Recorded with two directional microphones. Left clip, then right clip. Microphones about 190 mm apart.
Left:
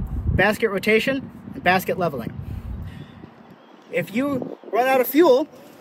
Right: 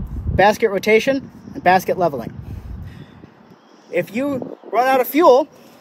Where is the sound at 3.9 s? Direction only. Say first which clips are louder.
Right 3 dB; 45° right (ahead or behind).